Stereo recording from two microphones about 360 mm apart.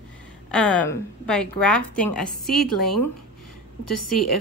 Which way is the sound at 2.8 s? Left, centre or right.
Left.